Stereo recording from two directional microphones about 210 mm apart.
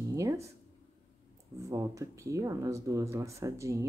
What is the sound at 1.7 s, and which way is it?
Speech, 15° right (ahead or behind).